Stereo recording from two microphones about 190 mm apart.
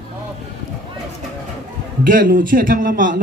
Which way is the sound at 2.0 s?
45° right (ahead or behind).